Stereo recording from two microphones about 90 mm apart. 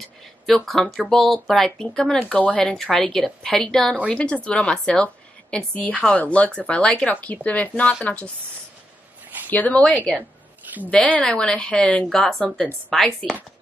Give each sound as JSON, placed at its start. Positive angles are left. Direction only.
{"t": 0.2, "sound": "a woman's voice", "side_deg": 5}
{"t": 9.5, "sound": "speech", "side_deg": 15}
{"t": 12.1, "sound": "speech", "side_deg": 5}